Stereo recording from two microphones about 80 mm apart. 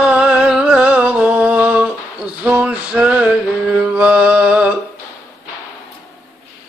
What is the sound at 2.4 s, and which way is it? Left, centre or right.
Music, centre.